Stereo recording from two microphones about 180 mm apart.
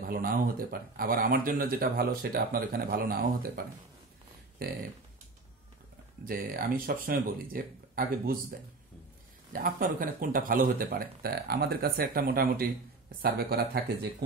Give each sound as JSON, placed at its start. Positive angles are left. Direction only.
{"t": 0.1, "sound": "speech", "side_deg": -55}
{"t": 6.2, "sound": "speech", "side_deg": -55}